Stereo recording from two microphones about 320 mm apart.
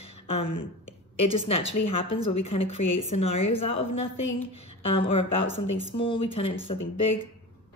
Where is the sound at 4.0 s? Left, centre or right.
Left.